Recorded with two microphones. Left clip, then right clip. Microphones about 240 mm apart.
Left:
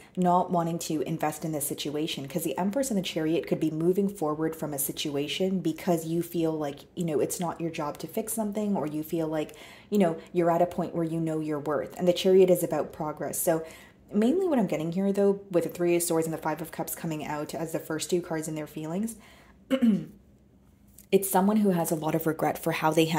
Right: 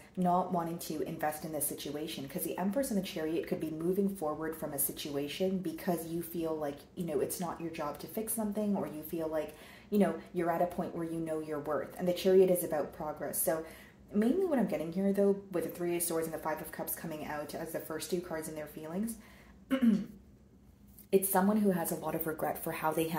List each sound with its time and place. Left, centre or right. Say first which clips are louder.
0.2 s speech: left 6 dB; left
21.1 s speech: left 5 dB; left